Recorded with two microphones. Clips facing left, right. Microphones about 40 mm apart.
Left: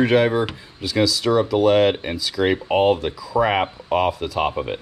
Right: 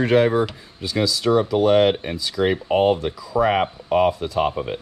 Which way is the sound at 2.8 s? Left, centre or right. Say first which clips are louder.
Even; left.